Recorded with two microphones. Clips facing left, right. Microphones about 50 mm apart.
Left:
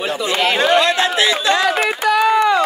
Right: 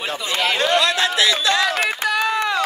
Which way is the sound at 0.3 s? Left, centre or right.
Left.